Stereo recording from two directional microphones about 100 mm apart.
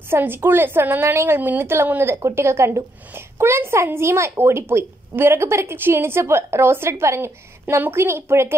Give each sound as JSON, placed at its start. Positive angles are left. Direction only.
{"t": 0.1, "sound": "a woman's voice", "side_deg": -20}